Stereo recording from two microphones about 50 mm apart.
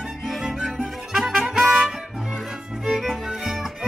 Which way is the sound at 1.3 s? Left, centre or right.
Centre.